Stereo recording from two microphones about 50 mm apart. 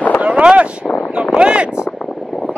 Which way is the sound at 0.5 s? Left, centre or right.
Right.